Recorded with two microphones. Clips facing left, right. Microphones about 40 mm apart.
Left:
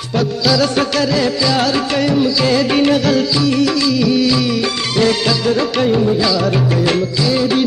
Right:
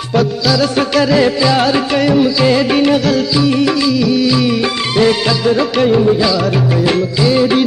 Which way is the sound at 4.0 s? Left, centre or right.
Centre.